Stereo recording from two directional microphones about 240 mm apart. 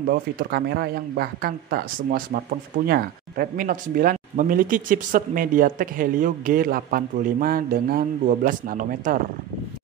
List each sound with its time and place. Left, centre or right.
0.1 s speech: right